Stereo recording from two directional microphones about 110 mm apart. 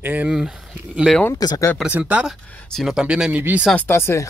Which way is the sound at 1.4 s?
35° left (ahead or behind).